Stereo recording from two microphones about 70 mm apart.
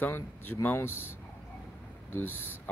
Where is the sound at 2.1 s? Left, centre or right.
Left.